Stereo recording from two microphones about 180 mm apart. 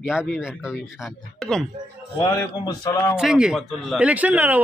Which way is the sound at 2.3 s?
20° left (ahead or behind).